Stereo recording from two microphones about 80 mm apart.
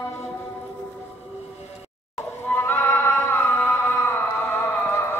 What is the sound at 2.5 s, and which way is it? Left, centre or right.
Music, left.